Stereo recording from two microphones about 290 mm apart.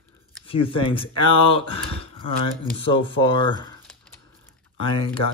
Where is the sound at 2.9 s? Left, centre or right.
Centre.